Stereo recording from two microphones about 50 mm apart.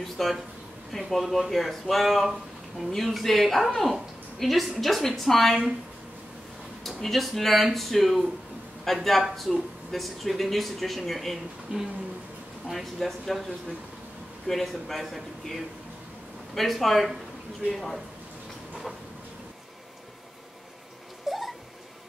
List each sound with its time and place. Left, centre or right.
0.0 s a woman's voice: centre
6.8 s a woman's voice: centre
11.7 s speech: centre
12.6 s a woman's voice: centre
14.5 s a woman's voice: centre
21.3 s a sound: centre